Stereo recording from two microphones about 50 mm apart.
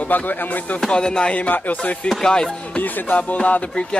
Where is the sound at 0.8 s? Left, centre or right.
Centre.